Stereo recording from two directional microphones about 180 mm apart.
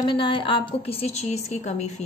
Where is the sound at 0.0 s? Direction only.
30° left (ahead or behind).